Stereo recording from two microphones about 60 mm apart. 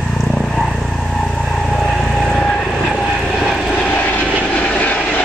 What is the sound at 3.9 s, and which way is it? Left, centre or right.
Vehicle, left.